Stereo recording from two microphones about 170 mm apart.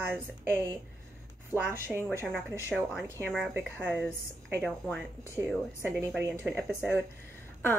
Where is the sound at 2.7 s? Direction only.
5° left (ahead or behind).